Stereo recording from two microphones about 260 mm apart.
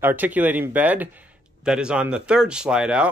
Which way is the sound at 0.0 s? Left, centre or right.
Centre.